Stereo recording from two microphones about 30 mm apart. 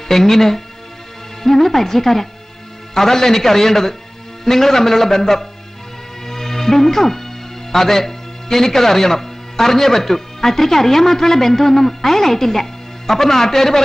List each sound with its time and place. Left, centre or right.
0.1 s a man's voice: centre
6.2 s music: centre
7.7 s speech: centre